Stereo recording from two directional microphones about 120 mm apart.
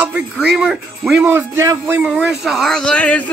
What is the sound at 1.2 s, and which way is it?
Speech, 20° right (ahead or behind).